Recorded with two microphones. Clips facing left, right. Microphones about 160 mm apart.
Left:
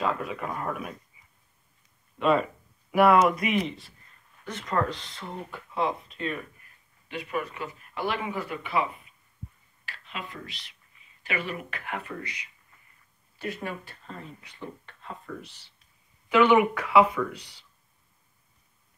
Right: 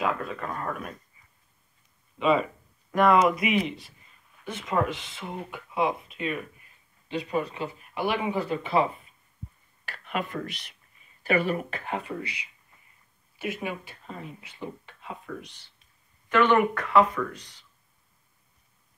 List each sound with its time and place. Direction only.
0.2 s speech: 10° left (ahead or behind)
2.1 s speech: centre (ahead or behind)
4.0 s speech: 20° right (ahead or behind)
7.1 s speech: 30° right (ahead or behind)
8.6 s speech: 35° right (ahead or behind)
9.8 s speech: 55° right (ahead or behind)
11.2 s speech: 40° right (ahead or behind)
12.0 s speech: 10° right (ahead or behind)
13.7 s speech: 5° right (ahead or behind)
15.4 s speech: 10° left (ahead or behind)